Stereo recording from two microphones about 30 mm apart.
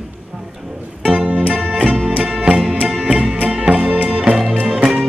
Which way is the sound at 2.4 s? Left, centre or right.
Right.